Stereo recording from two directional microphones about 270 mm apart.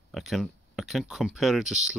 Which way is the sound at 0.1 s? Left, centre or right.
Centre.